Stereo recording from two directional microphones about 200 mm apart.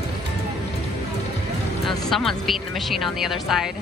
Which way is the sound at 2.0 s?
Centre (ahead or behind).